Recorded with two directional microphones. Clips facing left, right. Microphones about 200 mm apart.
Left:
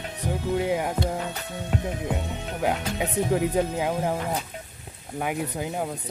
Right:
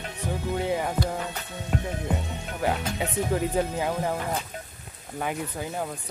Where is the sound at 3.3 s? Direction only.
10° left (ahead or behind).